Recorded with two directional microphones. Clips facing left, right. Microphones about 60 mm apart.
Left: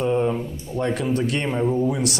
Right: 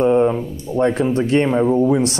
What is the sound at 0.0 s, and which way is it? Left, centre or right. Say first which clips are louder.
Speech: right 6 dB; right.